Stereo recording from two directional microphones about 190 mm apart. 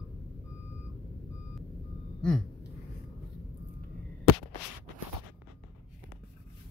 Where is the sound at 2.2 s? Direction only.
5° left (ahead or behind).